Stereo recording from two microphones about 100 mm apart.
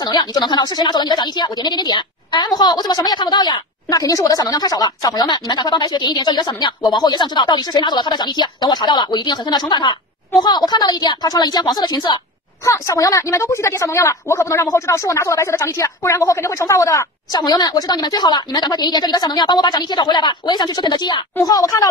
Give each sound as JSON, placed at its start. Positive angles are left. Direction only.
{"t": 0.0, "sound": "a woman's voice", "side_deg": 45}
{"t": 12.6, "sound": "a woman's voice", "side_deg": 35}
{"t": 17.4, "sound": "a woman's voice", "side_deg": 45}